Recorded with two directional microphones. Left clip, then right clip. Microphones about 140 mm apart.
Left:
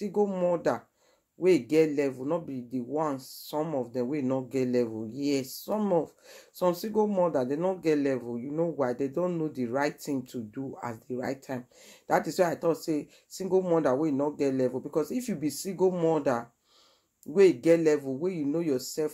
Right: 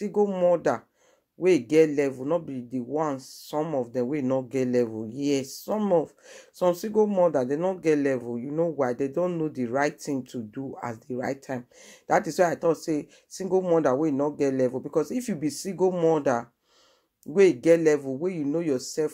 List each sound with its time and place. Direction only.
0.0 s speech: 30° right (ahead or behind)